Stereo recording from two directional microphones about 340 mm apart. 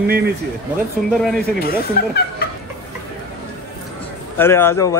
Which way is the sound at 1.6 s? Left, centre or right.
Left.